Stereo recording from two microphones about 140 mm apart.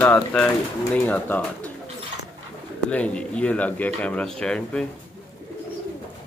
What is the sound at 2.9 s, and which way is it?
Speech, 10° left (ahead or behind).